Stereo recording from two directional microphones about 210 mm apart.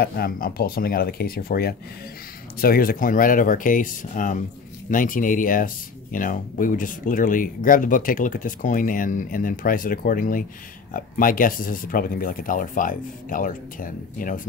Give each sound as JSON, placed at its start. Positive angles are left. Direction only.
{"t": 0.0, "sound": "speech", "side_deg": 45}